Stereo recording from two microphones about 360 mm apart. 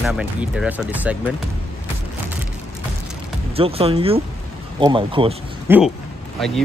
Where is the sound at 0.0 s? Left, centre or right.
Centre.